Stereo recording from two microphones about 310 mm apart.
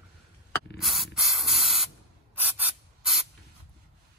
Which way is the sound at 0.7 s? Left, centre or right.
Centre.